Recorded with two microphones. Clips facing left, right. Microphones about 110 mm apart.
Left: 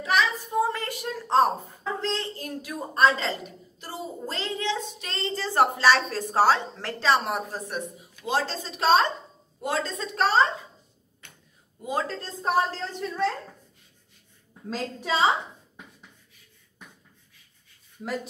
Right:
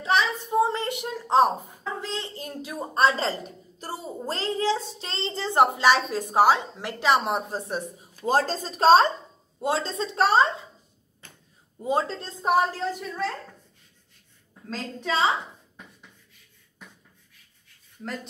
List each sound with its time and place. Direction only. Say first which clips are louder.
0.0 s a sound: right 1 dB; 30° right (ahead or behind)
1.3 s a woman's voice: right 1 dB; 10° right (ahead or behind); by 10.3 s 30° right (ahead or behind)
11.2 s a sound: right 2 dB; 35° right (ahead or behind)
11.8 s speech: right 3 dB; 25° right (ahead or behind)
12.4 s a woman's voice: right 2 dB; 15° right (ahead or behind)
13.0 s speech: left 3 dB; centre (ahead or behind)
14.7 s a woman's voice: left 1 dB; 5° left (ahead or behind)
18.0 s speech: left 3 dB; 5° left (ahead or behind)